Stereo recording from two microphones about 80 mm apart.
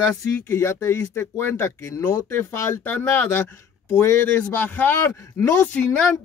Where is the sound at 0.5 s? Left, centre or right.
Left.